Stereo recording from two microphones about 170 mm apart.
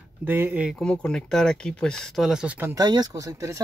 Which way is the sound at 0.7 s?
5° left (ahead or behind).